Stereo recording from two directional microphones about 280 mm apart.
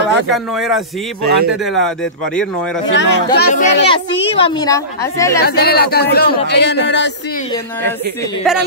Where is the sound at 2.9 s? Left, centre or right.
Left.